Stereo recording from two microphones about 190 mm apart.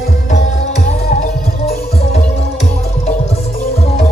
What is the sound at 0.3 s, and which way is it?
Music, 40° left (ahead or behind).